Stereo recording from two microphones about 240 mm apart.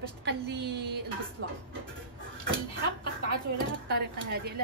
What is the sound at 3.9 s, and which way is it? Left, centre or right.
Speech, right.